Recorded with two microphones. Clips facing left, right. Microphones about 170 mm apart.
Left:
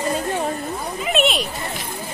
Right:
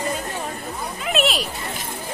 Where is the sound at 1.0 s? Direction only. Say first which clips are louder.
Left 2 dB; centre (ahead or behind).